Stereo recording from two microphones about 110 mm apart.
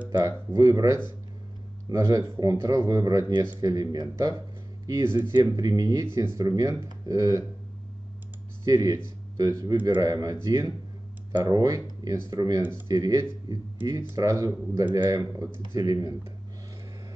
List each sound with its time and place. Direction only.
0.6 s speech: 30° right (ahead or behind)
5.0 s speech: 25° right (ahead or behind)
5.3 s speech: 35° right (ahead or behind)
8.6 s a man's voice: 30° right (ahead or behind)